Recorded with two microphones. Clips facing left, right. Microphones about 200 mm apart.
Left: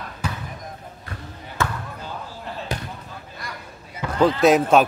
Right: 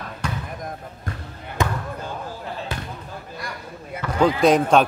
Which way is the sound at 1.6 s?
15° right (ahead or behind).